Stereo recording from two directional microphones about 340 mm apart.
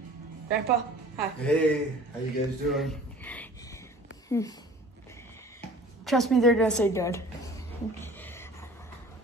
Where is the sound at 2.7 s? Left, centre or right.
Centre.